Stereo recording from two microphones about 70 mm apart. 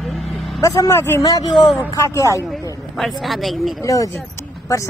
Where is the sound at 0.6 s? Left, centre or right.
Left.